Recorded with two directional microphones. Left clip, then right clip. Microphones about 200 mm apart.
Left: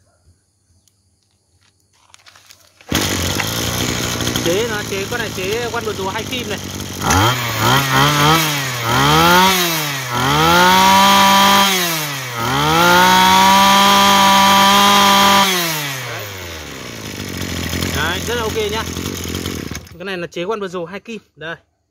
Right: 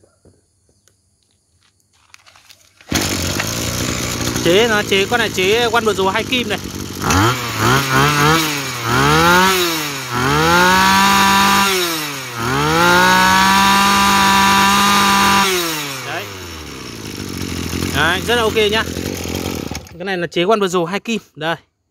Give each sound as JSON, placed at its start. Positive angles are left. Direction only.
{"t": 2.9, "sound": "chainsaw", "side_deg": 0}
{"t": 4.6, "sound": "speech", "side_deg": -50}
{"t": 7.3, "sound": "chainsaw", "side_deg": 0}
{"t": 17.9, "sound": "vehicle", "side_deg": -45}
{"t": 19.1, "sound": "chainsaw", "side_deg": -5}
{"t": 20.0, "sound": "a sound", "side_deg": -30}
{"t": 20.2, "sound": "speech", "side_deg": -50}